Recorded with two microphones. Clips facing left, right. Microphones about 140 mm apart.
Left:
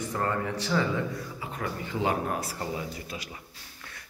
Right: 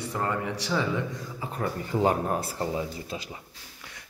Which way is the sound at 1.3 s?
35° right (ahead or behind).